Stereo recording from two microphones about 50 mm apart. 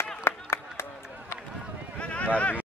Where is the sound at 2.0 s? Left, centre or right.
Left.